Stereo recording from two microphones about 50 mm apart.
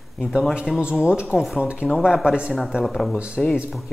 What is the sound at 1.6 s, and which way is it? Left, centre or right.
Speech, right.